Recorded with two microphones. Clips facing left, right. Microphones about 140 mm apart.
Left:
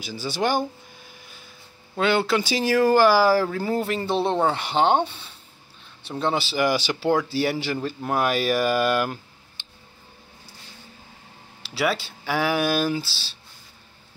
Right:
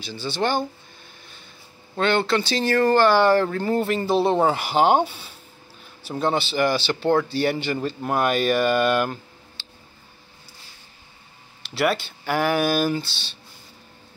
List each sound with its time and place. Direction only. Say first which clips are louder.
0.0 s speech: even; 10° left (ahead or behind)
2.0 s speech: even; 5° left (ahead or behind)
9.6 s a sound: right 2 dB; 20° left (ahead or behind)
11.7 s speech: right 2 dB; centre (ahead or behind)